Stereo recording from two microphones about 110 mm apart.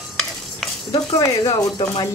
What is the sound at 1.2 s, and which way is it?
Speech, 35° left (ahead or behind).